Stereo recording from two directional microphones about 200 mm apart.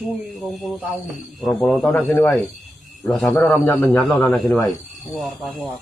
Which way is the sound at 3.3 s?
10° left (ahead or behind).